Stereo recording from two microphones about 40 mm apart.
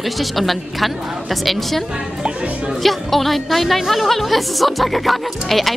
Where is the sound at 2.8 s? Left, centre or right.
Centre.